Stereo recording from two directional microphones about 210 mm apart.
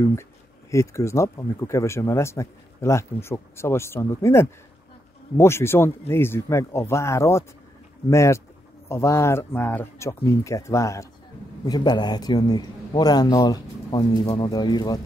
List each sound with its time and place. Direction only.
0.7 s a man's voice: 15° left (ahead or behind)